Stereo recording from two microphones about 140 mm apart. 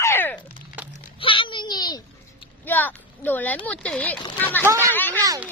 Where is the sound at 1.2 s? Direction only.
35° left (ahead or behind).